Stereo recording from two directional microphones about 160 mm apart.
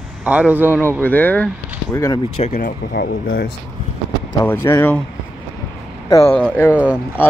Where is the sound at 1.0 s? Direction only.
10° left (ahead or behind).